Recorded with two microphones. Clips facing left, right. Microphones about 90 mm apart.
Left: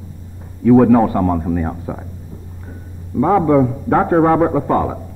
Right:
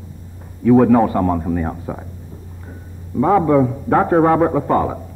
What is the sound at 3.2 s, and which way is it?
A man's voice, centre (ahead or behind).